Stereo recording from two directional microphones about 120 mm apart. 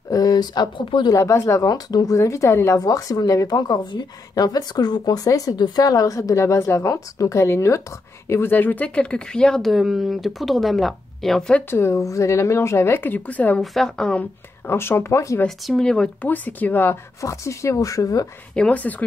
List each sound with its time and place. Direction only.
0.1 s speech: 30° left (ahead or behind)
1.1 s a woman's voice: 25° left (ahead or behind); by 11.6 s 5° left (ahead or behind)
11.7 s a woman's voice: 20° left (ahead or behind)
13.6 s speech: 5° left (ahead or behind)
14.7 s a woman's voice: 20° left (ahead or behind)
15.4 s a woman's voice: 5° left (ahead or behind); by 18.3 s 30° left (ahead or behind)
18.5 s speech: 10° left (ahead or behind)